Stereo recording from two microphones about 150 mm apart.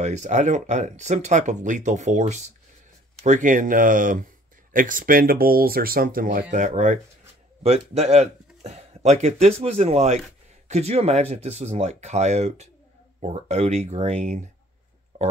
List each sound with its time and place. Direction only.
0.0 s speech: 50° right (ahead or behind); by 6.4 s 70° right (ahead or behind)
6.5 s speech: 55° right (ahead or behind)
7.6 s speech: 45° right (ahead or behind)
15.1 s a sound: 55° right (ahead or behind)